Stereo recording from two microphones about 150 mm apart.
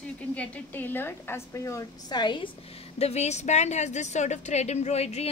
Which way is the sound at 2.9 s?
45° left (ahead or behind).